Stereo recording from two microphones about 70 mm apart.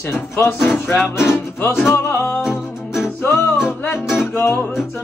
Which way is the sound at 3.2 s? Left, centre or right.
Left.